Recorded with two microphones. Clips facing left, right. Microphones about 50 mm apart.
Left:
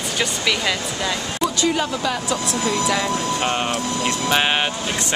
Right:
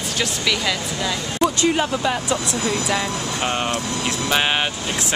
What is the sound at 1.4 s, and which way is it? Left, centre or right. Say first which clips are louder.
Speech: right 2 dB; right.